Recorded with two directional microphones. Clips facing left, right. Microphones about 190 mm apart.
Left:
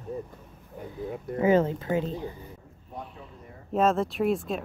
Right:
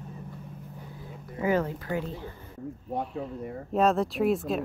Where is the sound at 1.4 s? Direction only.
25° left (ahead or behind).